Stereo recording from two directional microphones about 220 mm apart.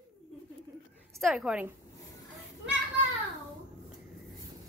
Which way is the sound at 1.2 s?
5° right (ahead or behind).